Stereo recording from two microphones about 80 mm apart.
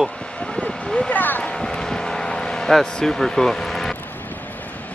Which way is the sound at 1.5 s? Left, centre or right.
Centre.